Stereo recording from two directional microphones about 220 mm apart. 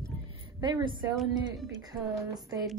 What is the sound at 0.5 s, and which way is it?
Speech, 20° right (ahead or behind).